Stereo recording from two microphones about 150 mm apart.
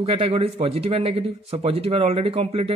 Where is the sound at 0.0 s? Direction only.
40° right (ahead or behind).